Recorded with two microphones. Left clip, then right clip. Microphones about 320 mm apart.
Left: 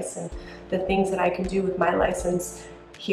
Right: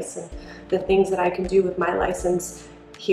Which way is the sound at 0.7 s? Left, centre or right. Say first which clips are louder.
Right 4 dB; centre.